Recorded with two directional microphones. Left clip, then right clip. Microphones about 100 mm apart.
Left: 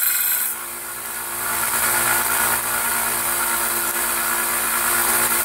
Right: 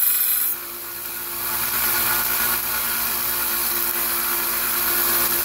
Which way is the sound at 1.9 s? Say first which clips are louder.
Left 3 dB; 20° left (ahead or behind).